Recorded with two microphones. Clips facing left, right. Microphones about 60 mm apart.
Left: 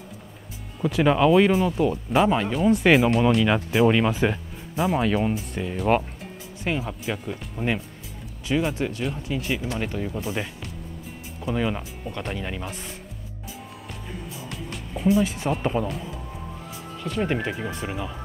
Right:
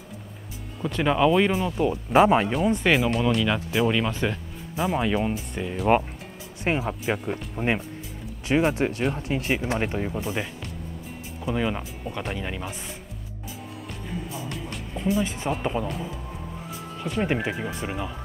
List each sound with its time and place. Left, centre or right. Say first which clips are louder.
0.8 s speech: left 2 dB; centre
2.1 s speech: right 4 dB; right
2.5 s speech: left 3 dB; centre
6.8 s speech: right 3 dB; centre
8.7 s speech: right 3 dB; right
10.1 s speech: even; centre
14.3 s music: right 2 dB; centre
17.0 s speech: even; centre